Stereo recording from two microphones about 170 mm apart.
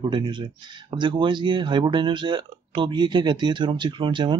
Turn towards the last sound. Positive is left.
turn(degrees=-30)  # may be behind; listen again after turning